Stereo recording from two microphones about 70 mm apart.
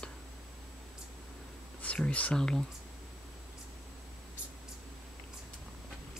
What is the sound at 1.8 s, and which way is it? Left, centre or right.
Speech, centre.